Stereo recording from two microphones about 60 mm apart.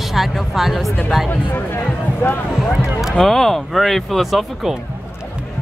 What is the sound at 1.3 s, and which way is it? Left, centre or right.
Speech, left.